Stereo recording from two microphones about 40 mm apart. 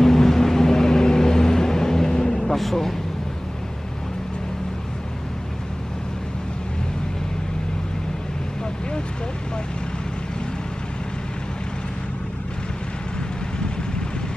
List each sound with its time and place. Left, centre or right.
0.0 s vehicle: centre